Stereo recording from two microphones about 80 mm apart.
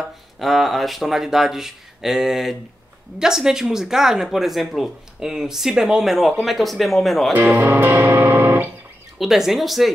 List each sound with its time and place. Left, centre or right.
0.4 s speech: centre
7.3 s music: right
9.2 s speech: centre